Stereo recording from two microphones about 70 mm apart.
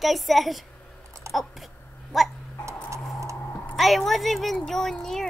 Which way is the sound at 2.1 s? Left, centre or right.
Centre.